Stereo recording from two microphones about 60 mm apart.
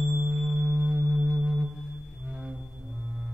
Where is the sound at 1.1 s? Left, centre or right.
Centre.